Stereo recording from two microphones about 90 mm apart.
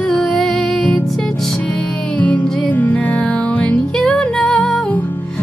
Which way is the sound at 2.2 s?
15° left (ahead or behind).